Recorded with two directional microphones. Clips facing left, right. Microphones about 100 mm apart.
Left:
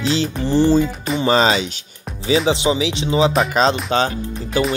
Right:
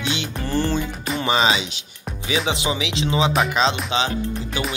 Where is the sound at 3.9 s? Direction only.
40° left (ahead or behind).